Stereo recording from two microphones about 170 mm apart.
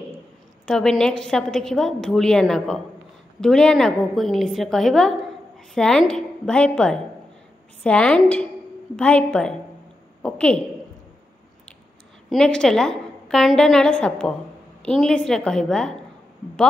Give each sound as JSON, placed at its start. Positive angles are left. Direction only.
{"t": 0.7, "sound": "a woman's voice", "side_deg": 5}
{"t": 12.3, "sound": "a woman's voice", "side_deg": 5}